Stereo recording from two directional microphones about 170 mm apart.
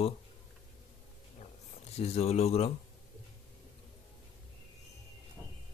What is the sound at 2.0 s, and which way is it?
Speech, 40° left (ahead or behind).